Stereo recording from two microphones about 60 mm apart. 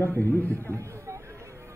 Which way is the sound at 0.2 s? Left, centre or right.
Left.